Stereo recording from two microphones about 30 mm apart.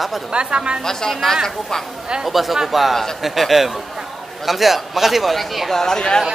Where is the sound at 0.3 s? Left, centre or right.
Right.